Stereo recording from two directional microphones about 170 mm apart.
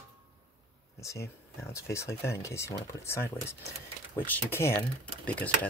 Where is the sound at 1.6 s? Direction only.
15° left (ahead or behind).